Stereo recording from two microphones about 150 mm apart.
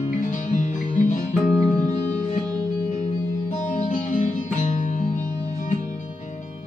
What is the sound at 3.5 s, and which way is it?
Music, 55° left (ahead or behind).